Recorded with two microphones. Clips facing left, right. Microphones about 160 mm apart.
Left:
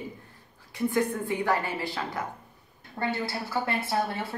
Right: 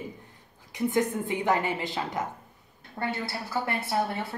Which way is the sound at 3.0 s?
5° right (ahead or behind).